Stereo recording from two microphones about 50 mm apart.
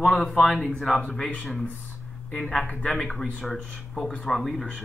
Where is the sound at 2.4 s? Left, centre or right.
Centre.